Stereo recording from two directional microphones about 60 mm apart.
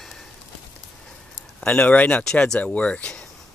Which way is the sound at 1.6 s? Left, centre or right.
Left.